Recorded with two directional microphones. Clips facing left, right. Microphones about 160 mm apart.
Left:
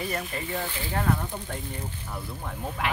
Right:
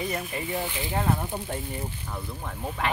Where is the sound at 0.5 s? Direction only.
15° right (ahead or behind).